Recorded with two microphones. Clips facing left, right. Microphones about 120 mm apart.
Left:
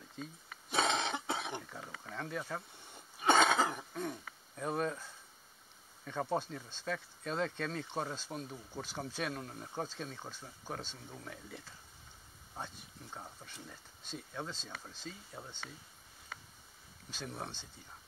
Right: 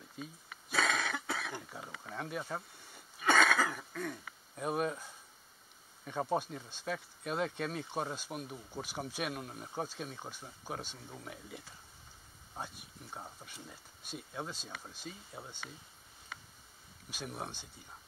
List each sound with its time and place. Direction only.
0.2 s speech: 10° right (ahead or behind)
0.7 s cough: 25° left (ahead or behind)
1.7 s a sound: 15° right (ahead or behind)
2.9 s cough: 25° left (ahead or behind)
4.6 s speech: 15° right (ahead or behind)
17.1 s speech: 15° right (ahead or behind)